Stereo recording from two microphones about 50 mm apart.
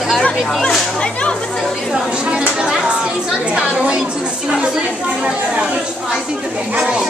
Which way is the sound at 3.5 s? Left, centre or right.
Centre.